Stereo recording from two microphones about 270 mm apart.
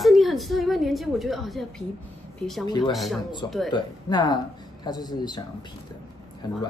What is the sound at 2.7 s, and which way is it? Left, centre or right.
Speech, centre.